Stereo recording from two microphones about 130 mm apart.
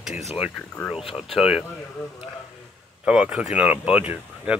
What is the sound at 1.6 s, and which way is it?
Speech, 15° left (ahead or behind).